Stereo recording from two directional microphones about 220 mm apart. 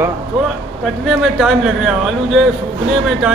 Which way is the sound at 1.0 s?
Centre (ahead or behind).